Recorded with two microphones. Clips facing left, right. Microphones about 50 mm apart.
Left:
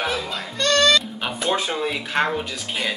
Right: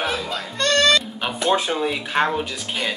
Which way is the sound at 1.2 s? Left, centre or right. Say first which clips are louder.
Right 3 dB; centre.